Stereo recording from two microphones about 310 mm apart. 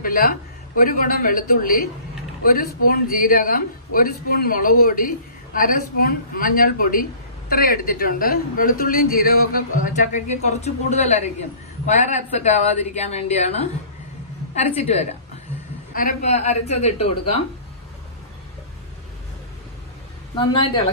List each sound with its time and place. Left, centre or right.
0.0 s speech: left
20.3 s speech: centre